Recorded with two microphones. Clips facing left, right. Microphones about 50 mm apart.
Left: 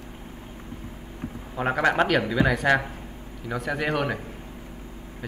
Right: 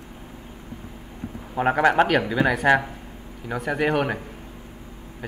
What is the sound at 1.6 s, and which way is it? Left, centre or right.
A man's voice, centre.